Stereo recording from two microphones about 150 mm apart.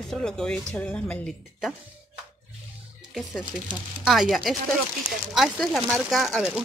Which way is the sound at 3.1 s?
5° right (ahead or behind).